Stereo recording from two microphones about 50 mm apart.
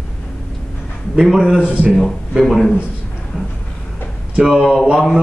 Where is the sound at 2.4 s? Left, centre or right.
Centre.